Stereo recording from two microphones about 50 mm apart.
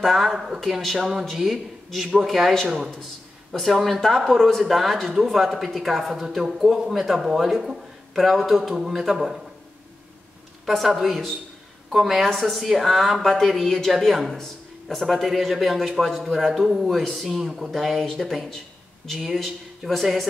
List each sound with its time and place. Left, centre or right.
0.0 s a man's voice: centre
3.5 s speech: centre
10.7 s speech: centre